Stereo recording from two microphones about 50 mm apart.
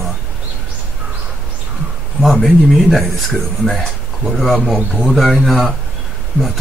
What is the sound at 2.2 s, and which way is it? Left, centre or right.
Speech, centre.